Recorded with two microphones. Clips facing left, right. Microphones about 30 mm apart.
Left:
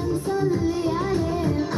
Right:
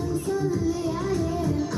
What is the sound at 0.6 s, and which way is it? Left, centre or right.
Music, left.